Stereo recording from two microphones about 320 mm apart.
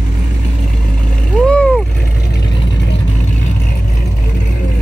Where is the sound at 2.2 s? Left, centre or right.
Left.